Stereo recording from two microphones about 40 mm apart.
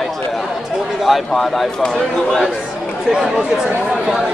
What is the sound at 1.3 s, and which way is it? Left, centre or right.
Speech, centre.